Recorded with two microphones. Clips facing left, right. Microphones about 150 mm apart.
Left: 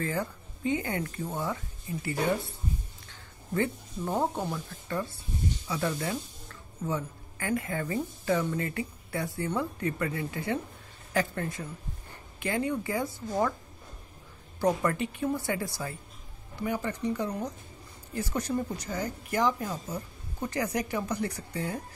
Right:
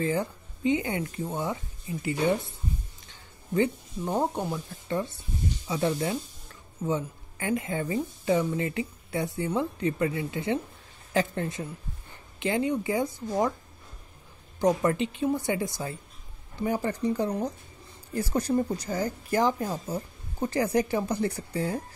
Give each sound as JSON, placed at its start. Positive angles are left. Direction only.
{"t": 0.0, "sound": "speech", "side_deg": -20}
{"t": 3.5, "sound": "speech", "side_deg": -20}
{"t": 14.8, "sound": "speech", "side_deg": -20}
{"t": 16.6, "sound": "speech", "side_deg": -35}